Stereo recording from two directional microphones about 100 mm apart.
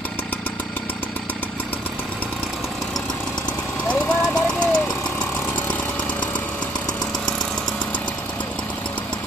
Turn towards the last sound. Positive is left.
turn(degrees=0)  # may be behind; listen again after turning